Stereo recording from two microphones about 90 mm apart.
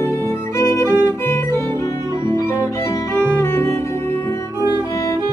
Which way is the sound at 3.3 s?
25° left (ahead or behind).